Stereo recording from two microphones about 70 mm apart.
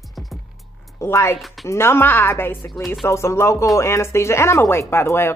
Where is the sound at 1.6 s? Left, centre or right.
Left.